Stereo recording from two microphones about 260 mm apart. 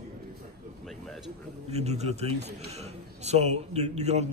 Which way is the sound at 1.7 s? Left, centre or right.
Right.